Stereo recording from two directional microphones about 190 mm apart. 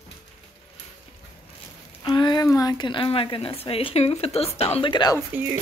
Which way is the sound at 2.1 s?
25° left (ahead or behind).